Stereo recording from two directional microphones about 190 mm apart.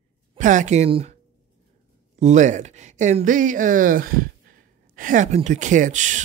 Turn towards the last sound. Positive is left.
turn(degrees=-40)  # may be behind; listen again after turning